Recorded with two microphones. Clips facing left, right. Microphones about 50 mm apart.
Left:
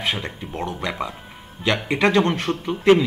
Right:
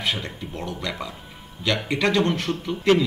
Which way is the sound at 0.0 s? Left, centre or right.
Left.